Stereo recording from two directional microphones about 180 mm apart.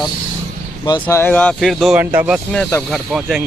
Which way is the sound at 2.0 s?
10° right (ahead or behind).